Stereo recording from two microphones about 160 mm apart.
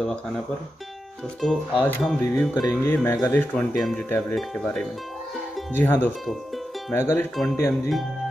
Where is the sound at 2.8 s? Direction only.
15° left (ahead or behind).